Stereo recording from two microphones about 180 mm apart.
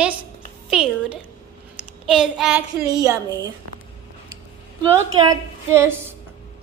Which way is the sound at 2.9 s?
20° right (ahead or behind).